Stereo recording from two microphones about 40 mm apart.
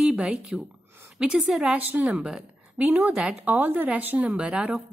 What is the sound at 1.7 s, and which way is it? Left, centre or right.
Speech, right.